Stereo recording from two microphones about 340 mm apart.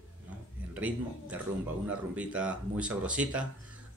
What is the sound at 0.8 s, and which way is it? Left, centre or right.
Speech, centre.